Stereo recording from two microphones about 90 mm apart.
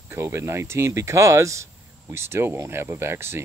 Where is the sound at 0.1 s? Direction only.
30° right (ahead or behind).